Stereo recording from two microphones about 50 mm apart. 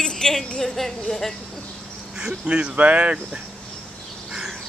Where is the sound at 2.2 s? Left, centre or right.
Centre.